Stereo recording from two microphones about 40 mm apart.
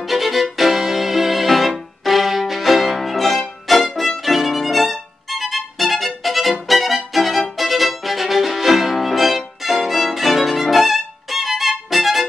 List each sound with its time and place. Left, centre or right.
0.0 s violin: centre